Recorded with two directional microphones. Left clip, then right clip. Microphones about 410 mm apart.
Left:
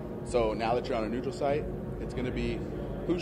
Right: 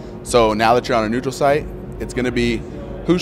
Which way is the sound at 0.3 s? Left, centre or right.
Right.